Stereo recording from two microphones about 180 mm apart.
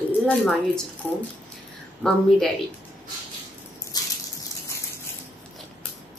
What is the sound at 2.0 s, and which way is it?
Speech, centre (ahead or behind).